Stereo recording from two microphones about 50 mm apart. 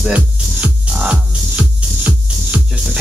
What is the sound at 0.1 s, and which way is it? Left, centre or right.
Music, right.